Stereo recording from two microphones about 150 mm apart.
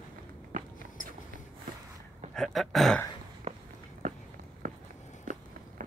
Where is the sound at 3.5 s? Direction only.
50° right (ahead or behind).